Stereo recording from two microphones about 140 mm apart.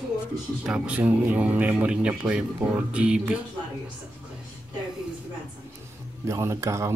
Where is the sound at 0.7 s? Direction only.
10° right (ahead or behind).